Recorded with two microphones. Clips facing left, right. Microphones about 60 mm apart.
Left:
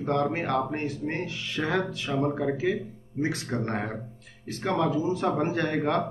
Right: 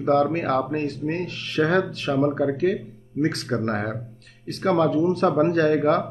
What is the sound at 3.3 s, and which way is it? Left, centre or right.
Speech, right.